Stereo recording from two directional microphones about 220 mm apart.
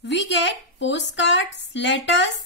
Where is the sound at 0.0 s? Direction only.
55° left (ahead or behind).